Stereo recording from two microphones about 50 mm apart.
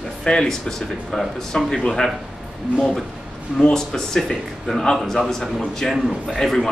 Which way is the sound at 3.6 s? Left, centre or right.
Centre.